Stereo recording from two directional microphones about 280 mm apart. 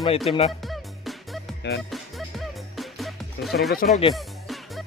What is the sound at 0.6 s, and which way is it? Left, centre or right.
Music, centre.